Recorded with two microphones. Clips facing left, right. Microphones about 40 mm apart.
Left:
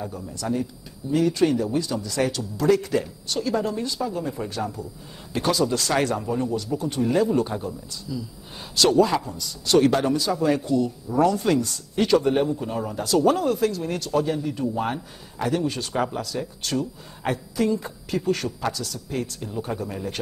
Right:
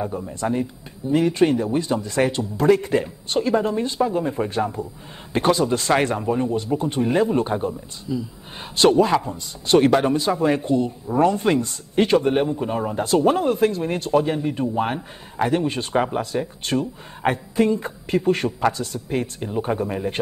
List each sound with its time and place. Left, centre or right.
0.0 s a man's voice: right